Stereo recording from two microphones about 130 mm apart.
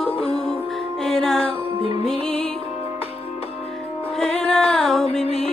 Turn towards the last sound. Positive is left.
turn(degrees=5)  # may be behind; listen again after turning